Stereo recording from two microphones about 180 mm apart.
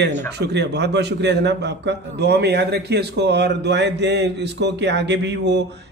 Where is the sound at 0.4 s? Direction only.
70° right (ahead or behind).